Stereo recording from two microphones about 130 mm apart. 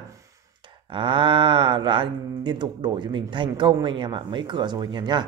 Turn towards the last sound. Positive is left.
turn(degrees=-35)  # may be behind; listen again after turning